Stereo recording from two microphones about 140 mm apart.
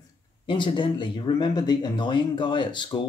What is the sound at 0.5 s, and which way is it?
Speech, 35° left (ahead or behind).